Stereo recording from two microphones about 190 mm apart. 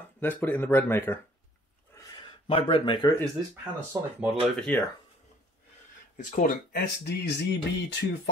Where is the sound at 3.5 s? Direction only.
10° right (ahead or behind).